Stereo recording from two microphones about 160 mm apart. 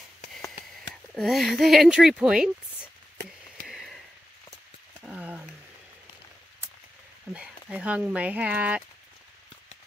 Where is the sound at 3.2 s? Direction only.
90° right.